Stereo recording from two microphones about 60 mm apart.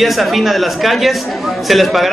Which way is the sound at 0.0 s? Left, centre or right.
Centre.